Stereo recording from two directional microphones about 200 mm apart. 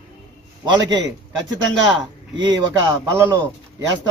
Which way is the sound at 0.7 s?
20° right (ahead or behind).